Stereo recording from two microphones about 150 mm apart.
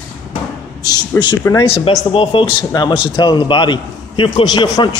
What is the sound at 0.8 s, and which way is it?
Speech, 25° left (ahead or behind).